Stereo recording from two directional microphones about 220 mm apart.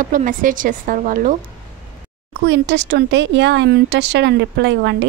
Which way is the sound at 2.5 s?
50° right (ahead or behind).